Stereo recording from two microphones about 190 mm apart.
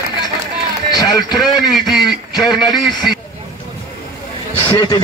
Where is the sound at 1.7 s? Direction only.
Centre (ahead or behind).